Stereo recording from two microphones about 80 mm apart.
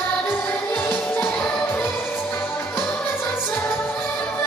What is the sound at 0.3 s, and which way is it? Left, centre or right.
Music, left.